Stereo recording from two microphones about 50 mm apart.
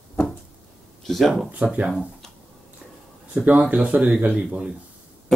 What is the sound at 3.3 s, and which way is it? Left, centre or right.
Speech, right.